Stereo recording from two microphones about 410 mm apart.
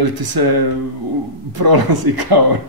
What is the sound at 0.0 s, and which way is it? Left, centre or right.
Speech, right.